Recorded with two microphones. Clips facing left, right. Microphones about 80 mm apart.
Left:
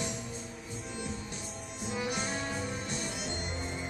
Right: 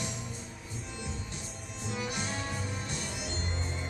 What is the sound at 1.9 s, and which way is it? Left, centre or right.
Music, centre.